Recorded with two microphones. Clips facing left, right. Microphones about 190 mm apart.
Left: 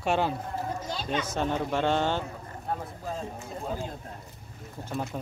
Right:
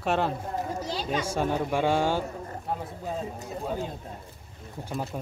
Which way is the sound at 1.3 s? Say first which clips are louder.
Right 2 dB; 10° right (ahead or behind).